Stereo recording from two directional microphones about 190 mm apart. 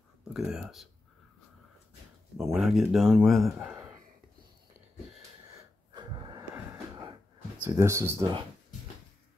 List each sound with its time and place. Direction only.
0.3 s speech: 5° right (ahead or behind)
2.5 s speech: centre (ahead or behind)
5.9 s wheeze: 25° right (ahead or behind)
7.6 s speech: 15° right (ahead or behind)